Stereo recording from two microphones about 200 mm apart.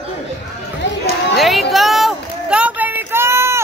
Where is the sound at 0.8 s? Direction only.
60° left (ahead or behind).